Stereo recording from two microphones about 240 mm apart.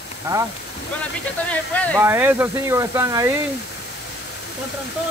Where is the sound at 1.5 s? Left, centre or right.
Centre.